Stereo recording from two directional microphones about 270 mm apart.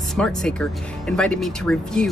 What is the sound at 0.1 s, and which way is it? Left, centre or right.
Speech, centre.